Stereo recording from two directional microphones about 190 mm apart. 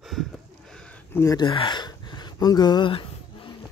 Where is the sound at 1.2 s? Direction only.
25° left (ahead or behind).